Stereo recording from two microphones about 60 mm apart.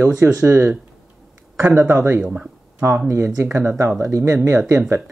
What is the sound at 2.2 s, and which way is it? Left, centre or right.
Speech, centre.